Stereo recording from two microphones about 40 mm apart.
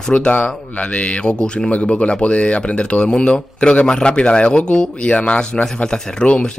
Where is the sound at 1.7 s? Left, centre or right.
Left.